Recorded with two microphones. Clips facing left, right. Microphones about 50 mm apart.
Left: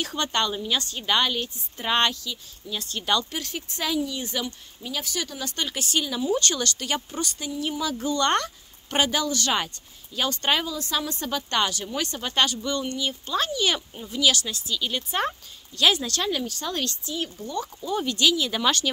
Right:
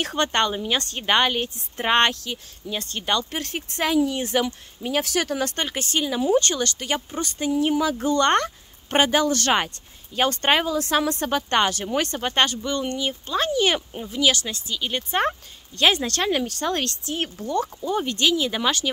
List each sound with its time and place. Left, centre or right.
0.0 s a woman's voice: right
3.0 s speech: right
3.3 s a woman's voice: right
5.0 s speech: right
5.6 s speech: right
8.0 s a woman's voice: right
10.8 s a woman's voice: right
14.0 s a woman's voice: centre; by 16.4 s right
16.4 s speech: right
17.8 s speech: right; by 18.9 s centre